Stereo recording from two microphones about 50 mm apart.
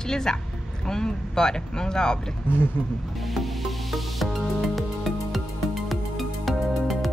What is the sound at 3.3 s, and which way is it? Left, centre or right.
Music, centre.